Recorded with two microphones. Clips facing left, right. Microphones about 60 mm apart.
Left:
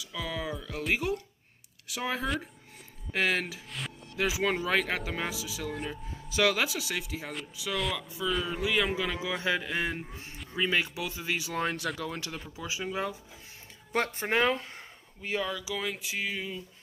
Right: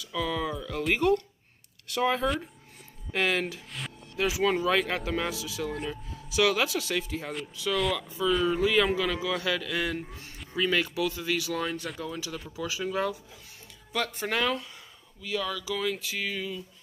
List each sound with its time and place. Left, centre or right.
0.0 s speech: centre
4.2 s speech: left
5.6 s speech: centre
6.5 s speech: centre
12.0 s speech: left
12.5 s speech: left
13.9 s speech: left
15.4 s speech: centre